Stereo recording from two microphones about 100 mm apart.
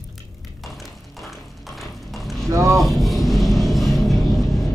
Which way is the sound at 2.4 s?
30° right (ahead or behind).